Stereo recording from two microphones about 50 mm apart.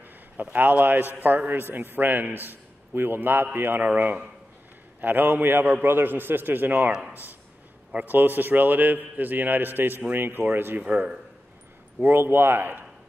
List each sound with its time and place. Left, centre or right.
0.4 s a man's voice: right
3.8 s speech: right
5.0 s a man's voice: right
7.9 s a man's voice: right
10.8 s speech: right
12.0 s a man's voice: right